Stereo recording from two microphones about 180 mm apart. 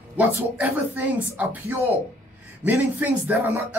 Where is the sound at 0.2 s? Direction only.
10° right (ahead or behind).